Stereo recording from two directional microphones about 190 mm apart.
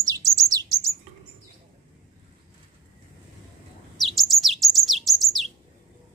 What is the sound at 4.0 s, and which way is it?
Bird, centre (ahead or behind).